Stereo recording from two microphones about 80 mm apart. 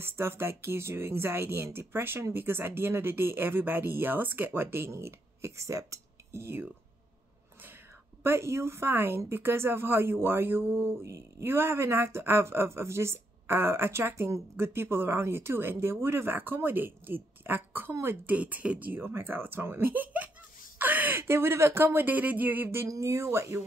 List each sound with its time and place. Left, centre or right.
0.0 s speech: right
8.2 s a woman's voice: right